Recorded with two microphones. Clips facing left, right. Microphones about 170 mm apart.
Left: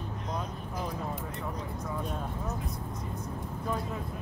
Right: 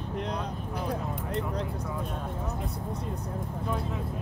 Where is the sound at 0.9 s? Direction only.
70° right (ahead or behind).